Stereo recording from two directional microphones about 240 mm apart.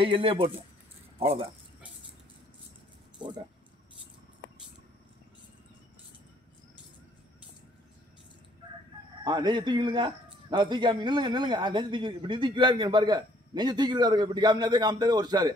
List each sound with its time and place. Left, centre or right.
0.0 s speech: right
9.2 s speech: centre